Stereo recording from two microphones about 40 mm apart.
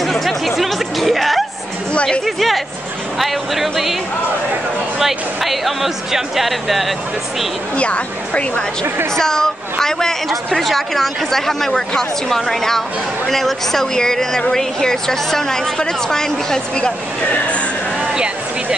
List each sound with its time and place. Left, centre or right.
0.0 s music: centre
2.2 s a sound: centre
3.2 s speech: centre
4.9 s speech: centre
7.7 s speech: left
9.1 s a woman's voice: centre
17.3 s speech: left
18.0 s a sound: centre